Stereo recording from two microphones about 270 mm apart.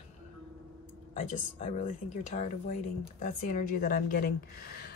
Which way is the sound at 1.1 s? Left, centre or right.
Left.